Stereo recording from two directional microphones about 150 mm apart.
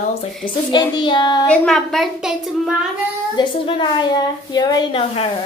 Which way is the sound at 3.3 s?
30° left (ahead or behind).